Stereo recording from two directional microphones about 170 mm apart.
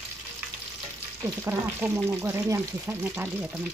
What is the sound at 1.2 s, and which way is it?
Speech, 15° right (ahead or behind).